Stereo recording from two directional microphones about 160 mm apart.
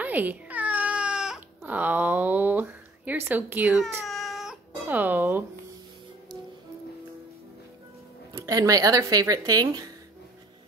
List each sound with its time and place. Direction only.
0.0 s baby cry: 10° right (ahead or behind)
4.0 s cat: centre (ahead or behind)
8.3 s speech: 20° right (ahead or behind)